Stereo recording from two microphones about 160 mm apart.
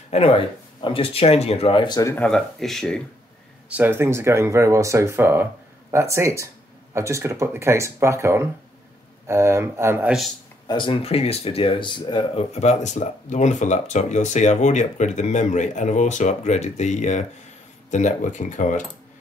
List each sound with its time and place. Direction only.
0.1 s speech: 35° left (ahead or behind)
2.1 s speech: 5° left (ahead or behind)
3.6 s speech: 10° right (ahead or behind)
10.7 s speech: 30° left (ahead or behind)
12.5 s speech: 45° left (ahead or behind)